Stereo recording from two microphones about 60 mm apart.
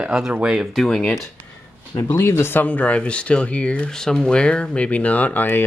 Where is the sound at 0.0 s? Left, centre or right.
Centre.